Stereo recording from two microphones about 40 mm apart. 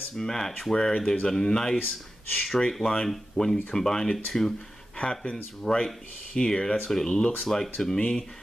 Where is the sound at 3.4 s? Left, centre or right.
Left.